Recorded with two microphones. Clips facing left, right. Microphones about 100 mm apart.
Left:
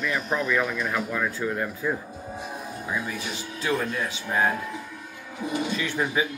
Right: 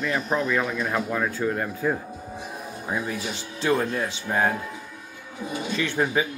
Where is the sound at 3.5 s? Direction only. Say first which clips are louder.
Right 3 dB; 35° right (ahead or behind).